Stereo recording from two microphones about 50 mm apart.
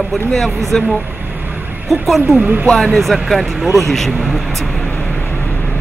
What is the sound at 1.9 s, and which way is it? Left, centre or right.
Speech, centre.